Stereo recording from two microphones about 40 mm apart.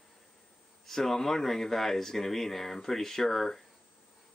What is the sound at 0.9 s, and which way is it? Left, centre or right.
Speech, centre.